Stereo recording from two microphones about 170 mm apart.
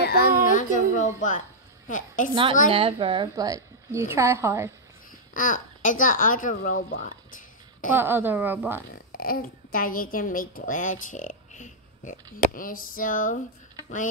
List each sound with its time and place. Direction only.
0.0 s a sound: 65° left (ahead or behind)
0.5 s music: 50° left (ahead or behind)
1.9 s a woman's voice: 50° left (ahead or behind)
2.7 s a woman's voice: 30° right (ahead or behind); by 4.7 s 15° right (ahead or behind)
5.3 s a child's voice: 50° left (ahead or behind)
7.9 s a woman's voice: 10° right (ahead or behind)
8.9 s a woman's voice: 60° left (ahead or behind)